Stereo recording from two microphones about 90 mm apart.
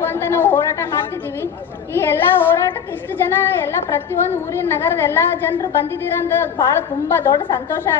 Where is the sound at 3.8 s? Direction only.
25° left (ahead or behind).